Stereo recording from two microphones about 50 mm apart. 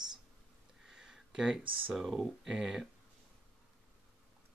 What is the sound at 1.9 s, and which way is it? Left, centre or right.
Speech, centre.